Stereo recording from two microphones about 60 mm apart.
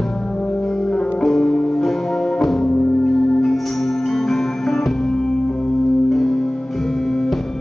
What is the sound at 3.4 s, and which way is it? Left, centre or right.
Music, centre.